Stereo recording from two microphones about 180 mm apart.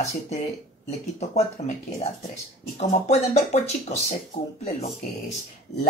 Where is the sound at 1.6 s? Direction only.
40° left (ahead or behind).